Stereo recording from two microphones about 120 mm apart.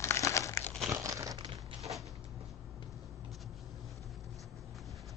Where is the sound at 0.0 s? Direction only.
25° left (ahead or behind).